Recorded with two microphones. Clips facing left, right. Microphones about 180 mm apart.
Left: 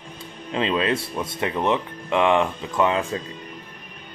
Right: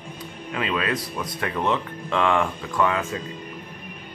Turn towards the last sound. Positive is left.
turn(degrees=20)  # may be behind; listen again after turning